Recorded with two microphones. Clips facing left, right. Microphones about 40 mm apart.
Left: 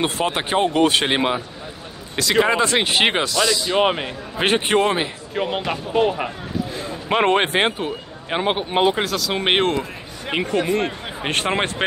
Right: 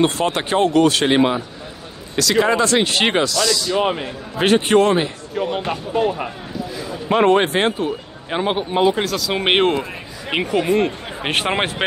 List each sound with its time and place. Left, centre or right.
0.0 s speech: centre
2.1 s speech: left
3.3 s speech: left
3.7 s a man's voice: left
4.4 s speech: centre
5.3 s speech: left
5.9 s speech: left
6.7 s a man's voice: left; by 8.6 s centre
8.9 s speech: centre
10.8 s speech: centre